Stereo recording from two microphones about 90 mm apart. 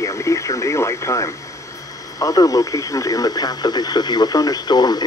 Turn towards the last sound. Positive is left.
turn(degrees=50)  # may be behind; listen again after turning